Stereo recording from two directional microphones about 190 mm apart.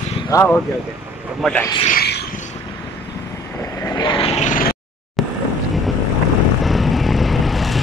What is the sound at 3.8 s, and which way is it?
Vehicle, 25° left (ahead or behind).